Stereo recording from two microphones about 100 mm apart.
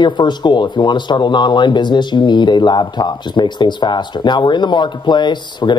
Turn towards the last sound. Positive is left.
turn(degrees=50)  # may be behind; listen again after turning